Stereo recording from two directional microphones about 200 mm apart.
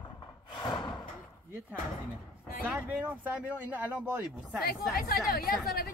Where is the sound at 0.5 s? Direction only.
20° left (ahead or behind).